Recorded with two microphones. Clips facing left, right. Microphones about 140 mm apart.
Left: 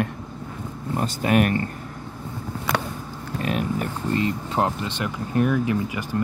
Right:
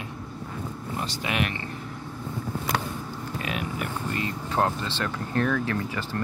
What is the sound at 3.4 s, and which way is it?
Speech, 40° left (ahead or behind).